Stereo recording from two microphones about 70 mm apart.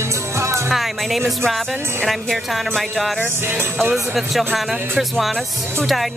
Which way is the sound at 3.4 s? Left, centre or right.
Right.